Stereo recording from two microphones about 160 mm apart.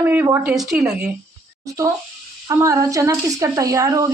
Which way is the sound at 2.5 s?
20° right (ahead or behind).